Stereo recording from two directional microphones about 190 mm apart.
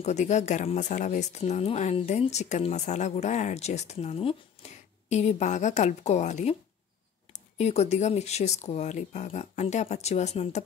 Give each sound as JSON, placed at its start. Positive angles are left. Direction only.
{"t": 0.0, "sound": "speech", "side_deg": 35}